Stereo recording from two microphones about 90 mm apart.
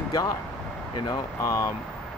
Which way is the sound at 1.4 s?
35° left (ahead or behind).